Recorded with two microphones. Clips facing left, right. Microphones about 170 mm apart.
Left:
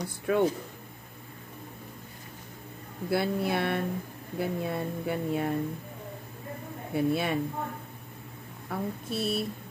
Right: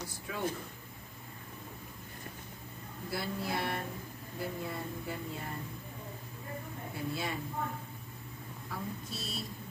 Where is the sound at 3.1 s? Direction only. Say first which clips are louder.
Left 9 dB; 65° left (ahead or behind).